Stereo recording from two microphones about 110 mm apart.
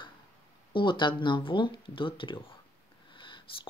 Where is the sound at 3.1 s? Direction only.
50° left (ahead or behind).